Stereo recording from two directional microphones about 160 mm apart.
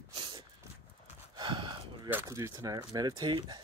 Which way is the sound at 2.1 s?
15° right (ahead or behind).